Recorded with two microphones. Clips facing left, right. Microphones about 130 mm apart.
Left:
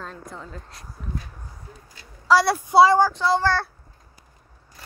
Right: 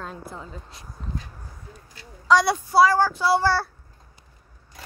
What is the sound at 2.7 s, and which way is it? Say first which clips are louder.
Speech: left 3 dB; 20° left (ahead or behind).